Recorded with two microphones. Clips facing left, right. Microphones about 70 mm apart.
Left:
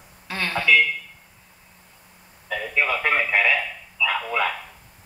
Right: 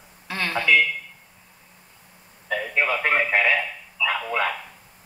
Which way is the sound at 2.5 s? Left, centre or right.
Centre.